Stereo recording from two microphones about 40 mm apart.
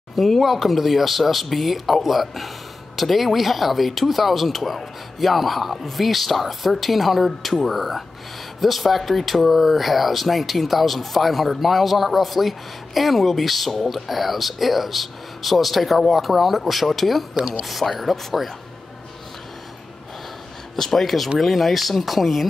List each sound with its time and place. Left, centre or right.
0.1 s speech: centre
17.4 s speech: right
17.6 s speech: centre
20.7 s speech: centre